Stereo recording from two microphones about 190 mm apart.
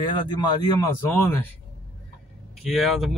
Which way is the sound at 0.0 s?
25° left (ahead or behind).